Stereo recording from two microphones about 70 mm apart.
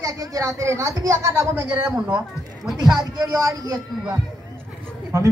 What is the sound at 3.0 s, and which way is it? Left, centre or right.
Speech, right.